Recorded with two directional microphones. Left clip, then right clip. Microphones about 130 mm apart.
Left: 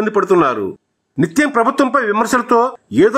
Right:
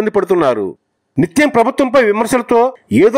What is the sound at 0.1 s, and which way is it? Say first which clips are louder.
A man's voice: even; 40° right (ahead or behind).